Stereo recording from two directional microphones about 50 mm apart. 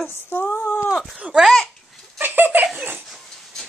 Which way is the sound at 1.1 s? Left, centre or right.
Right.